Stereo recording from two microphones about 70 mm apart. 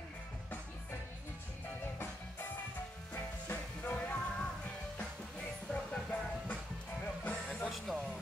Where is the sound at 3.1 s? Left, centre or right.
Left.